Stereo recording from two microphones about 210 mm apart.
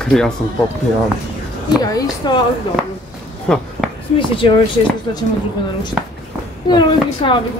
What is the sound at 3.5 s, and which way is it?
Speech, 5° left (ahead or behind).